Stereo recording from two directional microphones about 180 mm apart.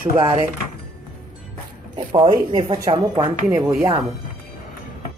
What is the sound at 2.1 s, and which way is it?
Speech, 30° right (ahead or behind).